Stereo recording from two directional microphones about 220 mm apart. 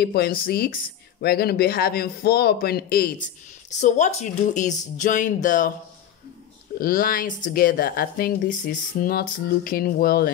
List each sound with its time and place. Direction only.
0.0 s a man's voice: 45° left (ahead or behind)
6.8 s speech: 40° left (ahead or behind)